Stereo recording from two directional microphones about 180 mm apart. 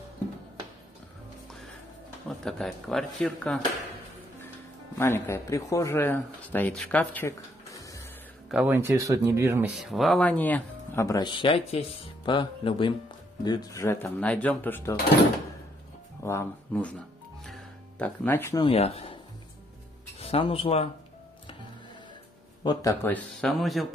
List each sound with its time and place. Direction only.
2.2 s speech: centre (ahead or behind)
4.9 s speech: 15° left (ahead or behind)
8.5 s speech: 10° right (ahead or behind)
9.8 s speech: centre (ahead or behind)
16.2 s speech: 15° left (ahead or behind)
17.5 s music: 10° left (ahead or behind)
18.6 s speech: 35° left (ahead or behind)
20.2 s speech: 30° left (ahead or behind)
22.6 s speech: 20° left (ahead or behind)
23.3 s speech: centre (ahead or behind)